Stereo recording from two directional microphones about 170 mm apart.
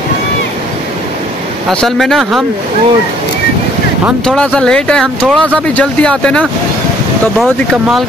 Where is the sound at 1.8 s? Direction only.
Centre (ahead or behind).